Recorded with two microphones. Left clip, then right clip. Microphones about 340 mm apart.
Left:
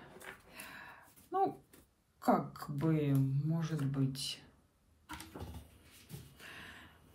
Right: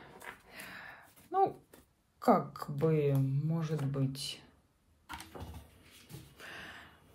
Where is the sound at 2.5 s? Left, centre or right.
Centre.